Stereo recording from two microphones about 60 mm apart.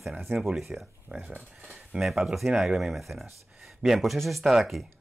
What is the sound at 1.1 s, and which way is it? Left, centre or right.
Speech, right.